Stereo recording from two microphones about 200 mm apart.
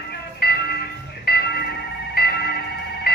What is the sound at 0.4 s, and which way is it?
Music, 50° left (ahead or behind).